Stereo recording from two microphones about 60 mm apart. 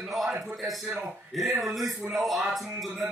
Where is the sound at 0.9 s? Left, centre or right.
Right.